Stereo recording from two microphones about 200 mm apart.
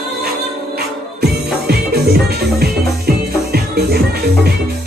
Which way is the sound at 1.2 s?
50° right (ahead or behind).